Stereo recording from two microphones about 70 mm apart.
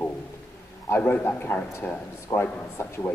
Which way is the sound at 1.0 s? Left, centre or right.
Left.